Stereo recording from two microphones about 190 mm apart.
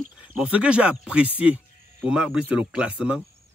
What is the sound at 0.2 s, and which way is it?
Speech, 5° right (ahead or behind).